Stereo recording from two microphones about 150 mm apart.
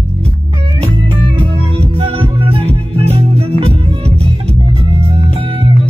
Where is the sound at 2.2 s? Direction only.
40° right (ahead or behind).